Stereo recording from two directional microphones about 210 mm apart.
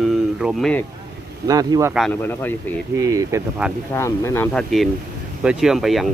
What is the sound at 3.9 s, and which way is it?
Speech, 10° left (ahead or behind).